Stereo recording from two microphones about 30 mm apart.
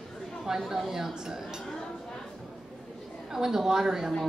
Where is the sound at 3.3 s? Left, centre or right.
Centre.